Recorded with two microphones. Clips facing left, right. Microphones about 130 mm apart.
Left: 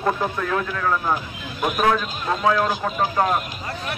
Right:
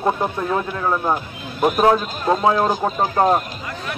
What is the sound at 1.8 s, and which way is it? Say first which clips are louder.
A man's voice: right 3 dB; 30° right (ahead or behind).